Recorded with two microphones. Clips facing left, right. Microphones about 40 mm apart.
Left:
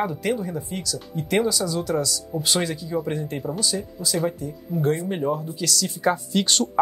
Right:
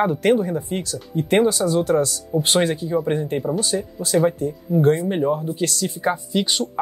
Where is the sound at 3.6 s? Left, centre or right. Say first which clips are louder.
Right 3 dB; right.